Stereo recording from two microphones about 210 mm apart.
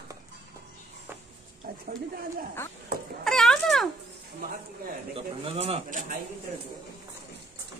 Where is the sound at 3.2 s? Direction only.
Centre (ahead or behind).